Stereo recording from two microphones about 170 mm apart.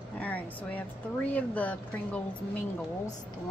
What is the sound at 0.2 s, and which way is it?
Speech, 10° left (ahead or behind).